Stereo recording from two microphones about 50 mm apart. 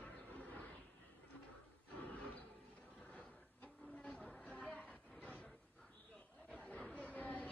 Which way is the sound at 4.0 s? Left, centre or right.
Centre.